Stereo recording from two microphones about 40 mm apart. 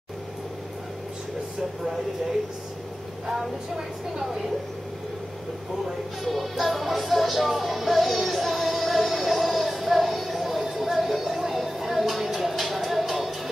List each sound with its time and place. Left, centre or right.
3.3 s speech: centre
6.2 s music: centre
10.6 s a sound: centre